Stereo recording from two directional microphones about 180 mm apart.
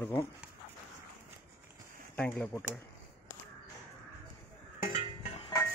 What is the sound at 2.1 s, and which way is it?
Speech, 5° left (ahead or behind).